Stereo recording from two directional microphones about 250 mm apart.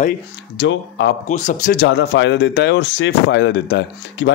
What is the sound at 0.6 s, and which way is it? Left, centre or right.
Speech, left.